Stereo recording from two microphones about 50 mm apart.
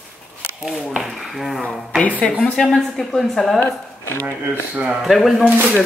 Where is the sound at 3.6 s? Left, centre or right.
Left.